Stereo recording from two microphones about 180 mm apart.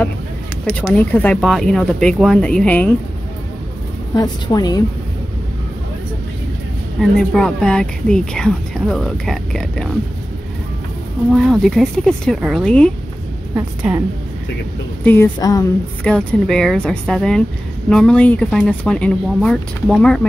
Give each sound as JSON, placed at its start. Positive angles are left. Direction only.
{"t": 0.7, "sound": "speech", "side_deg": 5}
{"t": 4.1, "sound": "a woman's voice", "side_deg": 20}
{"t": 7.0, "sound": "speech", "side_deg": 5}
{"t": 11.3, "sound": "speech", "side_deg": 0}
{"t": 13.6, "sound": "a woman's voice", "side_deg": -15}
{"t": 15.3, "sound": "a woman's voice", "side_deg": 20}
{"t": 16.0, "sound": "speech", "side_deg": 5}